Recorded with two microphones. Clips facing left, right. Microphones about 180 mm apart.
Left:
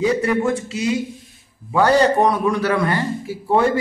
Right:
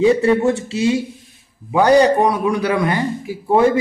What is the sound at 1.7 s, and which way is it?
A man's voice, 15° right (ahead or behind).